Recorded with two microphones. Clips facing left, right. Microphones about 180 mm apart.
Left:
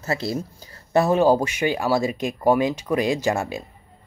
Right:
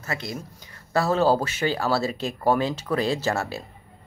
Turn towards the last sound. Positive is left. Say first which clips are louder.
# left 3 dB
turn(degrees=15)  # may be behind; listen again after turning